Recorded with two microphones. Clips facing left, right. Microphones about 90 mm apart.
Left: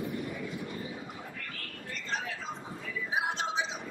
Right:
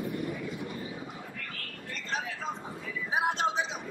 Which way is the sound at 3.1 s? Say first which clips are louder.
Right 4 dB; 50° right (ahead or behind).